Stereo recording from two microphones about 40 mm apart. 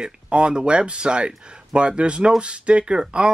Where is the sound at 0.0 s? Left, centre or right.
Right.